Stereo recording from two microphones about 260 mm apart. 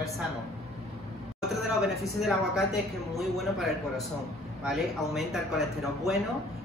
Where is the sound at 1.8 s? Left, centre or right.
Centre.